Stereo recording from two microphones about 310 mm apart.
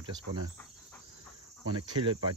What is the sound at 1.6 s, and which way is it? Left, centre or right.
Cricket, centre.